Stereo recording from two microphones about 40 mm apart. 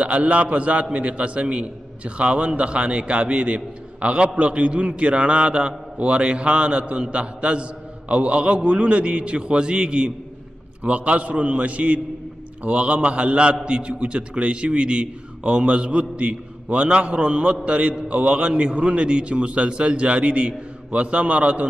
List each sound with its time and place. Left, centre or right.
0.0 s a man's voice: right